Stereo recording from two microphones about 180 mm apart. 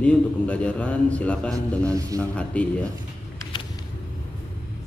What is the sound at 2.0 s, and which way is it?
Speech, 20° right (ahead or behind).